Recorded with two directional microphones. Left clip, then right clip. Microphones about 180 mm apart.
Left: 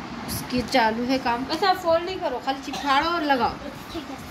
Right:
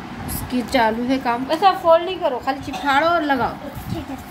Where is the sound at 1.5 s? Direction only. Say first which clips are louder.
Right 8 dB; 25° right (ahead or behind).